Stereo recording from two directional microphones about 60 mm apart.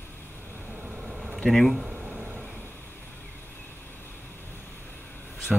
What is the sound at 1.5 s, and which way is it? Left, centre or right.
Speech, centre.